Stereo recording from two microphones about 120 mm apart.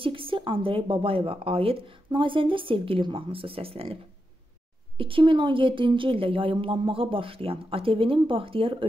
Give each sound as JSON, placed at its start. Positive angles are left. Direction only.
{"t": 0.0, "sound": "a woman's voice", "side_deg": -45}